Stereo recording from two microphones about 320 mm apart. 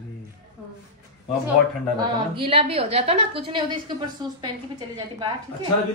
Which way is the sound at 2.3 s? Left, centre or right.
Centre.